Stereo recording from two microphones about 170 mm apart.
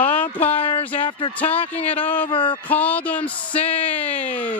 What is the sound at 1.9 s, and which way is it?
Speech, 10° left (ahead or behind).